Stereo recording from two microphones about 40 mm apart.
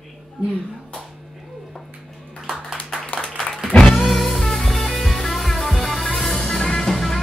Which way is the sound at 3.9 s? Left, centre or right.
Centre.